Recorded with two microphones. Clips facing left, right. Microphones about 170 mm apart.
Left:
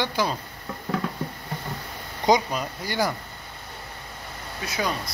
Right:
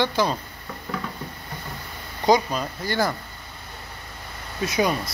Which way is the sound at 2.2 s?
15° left (ahead or behind).